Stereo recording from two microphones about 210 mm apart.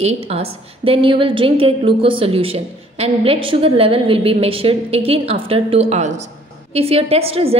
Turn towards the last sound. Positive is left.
turn(degrees=-30)  # may be behind; listen again after turning